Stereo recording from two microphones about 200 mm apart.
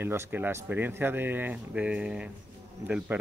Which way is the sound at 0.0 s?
10° right (ahead or behind).